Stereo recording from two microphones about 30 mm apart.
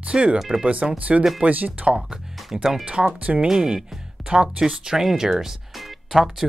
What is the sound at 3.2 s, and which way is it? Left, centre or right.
Speech, right.